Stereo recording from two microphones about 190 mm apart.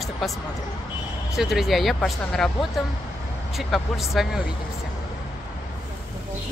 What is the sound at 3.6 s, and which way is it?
Speech, centre (ahead or behind).